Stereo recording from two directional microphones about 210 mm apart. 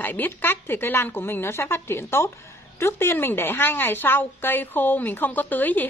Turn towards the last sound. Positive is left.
turn(degrees=10)  # may be behind; listen again after turning